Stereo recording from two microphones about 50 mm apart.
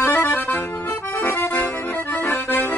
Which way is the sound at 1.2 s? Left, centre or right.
Left.